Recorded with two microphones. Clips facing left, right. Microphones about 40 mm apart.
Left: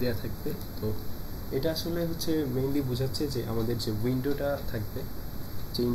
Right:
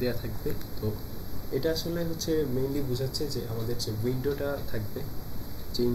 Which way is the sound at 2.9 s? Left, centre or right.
Left.